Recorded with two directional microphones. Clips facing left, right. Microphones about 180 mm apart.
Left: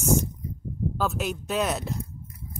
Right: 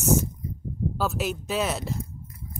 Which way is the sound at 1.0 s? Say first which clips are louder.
Even; 5° right (ahead or behind).